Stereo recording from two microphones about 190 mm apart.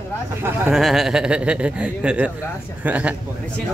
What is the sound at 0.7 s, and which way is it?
Speech, centre (ahead or behind).